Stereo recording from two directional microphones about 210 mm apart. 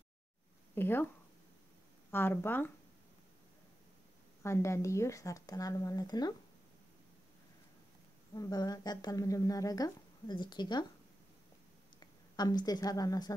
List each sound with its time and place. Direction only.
0.7 s speech: 10° left (ahead or behind)
2.0 s speech: 10° left (ahead or behind)
4.4 s speech: 15° left (ahead or behind)
8.4 s speech: 15° left (ahead or behind)
12.0 s a woman's voice: 20° left (ahead or behind)